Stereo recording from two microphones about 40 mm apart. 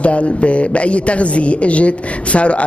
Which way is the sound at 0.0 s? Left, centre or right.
Left.